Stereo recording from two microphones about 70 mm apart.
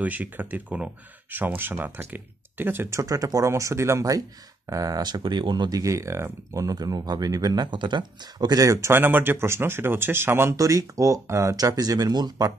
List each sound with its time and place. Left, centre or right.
0.0 s speech: right
3.4 s speech: right
4.6 s speech: right
6.5 s speech: right
8.8 s speech: right
10.5 s speech: right
11.5 s speech: right